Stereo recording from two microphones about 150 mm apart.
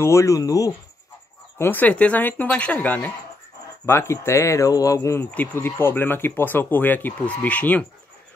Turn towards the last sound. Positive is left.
turn(degrees=10)  # may be behind; listen again after turning